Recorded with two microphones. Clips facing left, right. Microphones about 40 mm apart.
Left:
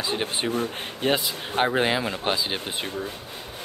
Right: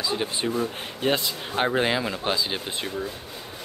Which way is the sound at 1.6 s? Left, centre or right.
Centre.